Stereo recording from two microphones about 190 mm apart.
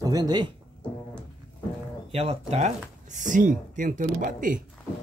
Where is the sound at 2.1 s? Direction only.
30° right (ahead or behind).